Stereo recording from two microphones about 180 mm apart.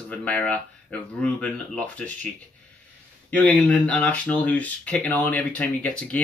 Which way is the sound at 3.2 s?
5° left (ahead or behind).